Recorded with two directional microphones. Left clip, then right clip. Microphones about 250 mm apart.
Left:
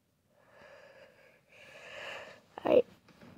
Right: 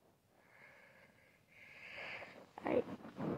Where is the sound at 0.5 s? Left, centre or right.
Left.